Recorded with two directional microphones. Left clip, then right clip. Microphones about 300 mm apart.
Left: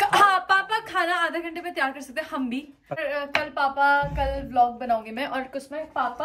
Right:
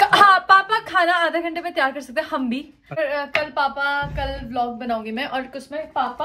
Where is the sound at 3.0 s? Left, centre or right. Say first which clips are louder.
Right 5 dB; centre.